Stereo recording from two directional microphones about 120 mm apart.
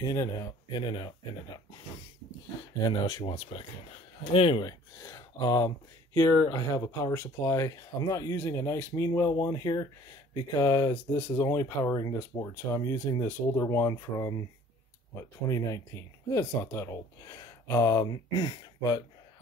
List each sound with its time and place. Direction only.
0.0 s speech: 30° left (ahead or behind)
2.8 s speech: 35° left (ahead or behind)
3.3 s speech: 45° left (ahead or behind)
4.9 s speech: 25° left (ahead or behind)